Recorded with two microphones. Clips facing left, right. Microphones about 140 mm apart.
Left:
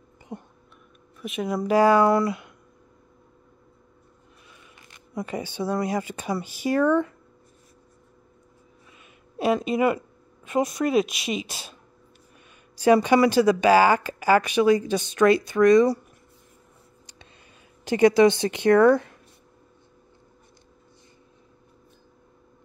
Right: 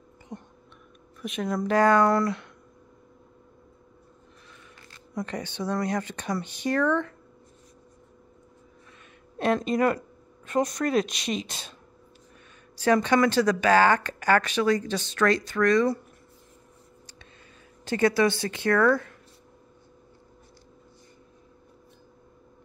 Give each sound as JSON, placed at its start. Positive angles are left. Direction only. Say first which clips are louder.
{"t": 1.2, "sound": "speech", "louder": "left 1 dB", "side_deg": 5}
{"t": 5.1, "sound": "speech", "louder": "left 2 dB", "side_deg": 5}
{"t": 9.4, "sound": "speech", "louder": "left 2 dB", "side_deg": 5}
{"t": 12.7, "sound": "speech", "louder": "left 4 dB", "side_deg": 10}
{"t": 17.8, "sound": "a woman's voice", "louder": "left 6 dB", "side_deg": 15}